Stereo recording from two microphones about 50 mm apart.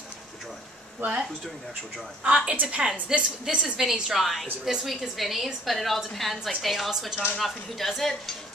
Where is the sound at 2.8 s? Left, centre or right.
Centre.